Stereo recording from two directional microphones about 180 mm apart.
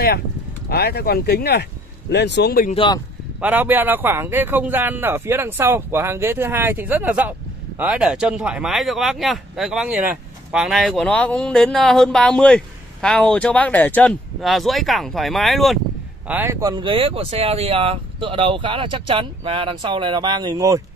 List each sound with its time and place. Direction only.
0.7 s speech: 60° left (ahead or behind)
2.7 s speech: 30° left (ahead or behind)
3.3 s speech: 10° right (ahead or behind)
16.3 s speech: 10° right (ahead or behind)